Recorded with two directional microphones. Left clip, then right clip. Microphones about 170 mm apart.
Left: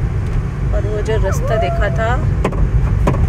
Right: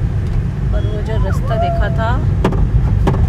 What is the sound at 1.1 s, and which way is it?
Speech, 5° left (ahead or behind).